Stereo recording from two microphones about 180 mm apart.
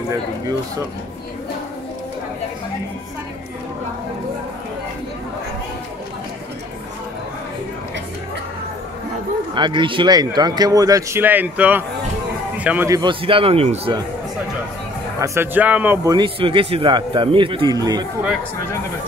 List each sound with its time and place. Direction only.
9.5 s speech: 25° right (ahead or behind)
13.1 s speech: 30° right (ahead or behind)
15.1 s a man's voice: 15° right (ahead or behind)
16.1 s speech: 25° right (ahead or behind)